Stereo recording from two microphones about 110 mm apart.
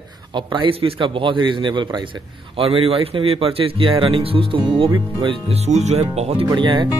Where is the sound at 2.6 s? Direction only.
60° right (ahead or behind).